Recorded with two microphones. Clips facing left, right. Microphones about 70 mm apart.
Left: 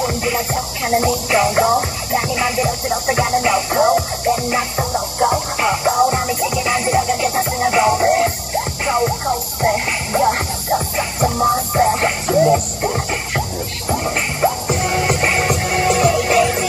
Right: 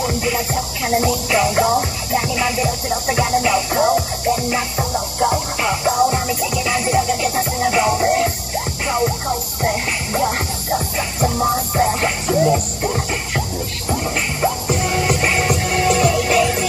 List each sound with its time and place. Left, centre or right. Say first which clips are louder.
0.0 s music: left 1 dB; left